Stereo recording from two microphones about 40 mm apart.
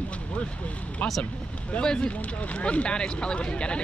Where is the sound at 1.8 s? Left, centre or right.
Left.